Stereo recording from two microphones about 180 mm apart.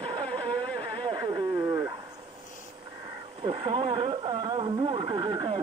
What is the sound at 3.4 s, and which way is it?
Speech, 30° right (ahead or behind).